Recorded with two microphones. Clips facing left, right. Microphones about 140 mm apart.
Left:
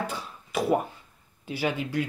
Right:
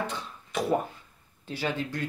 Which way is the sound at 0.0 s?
5° left (ahead or behind).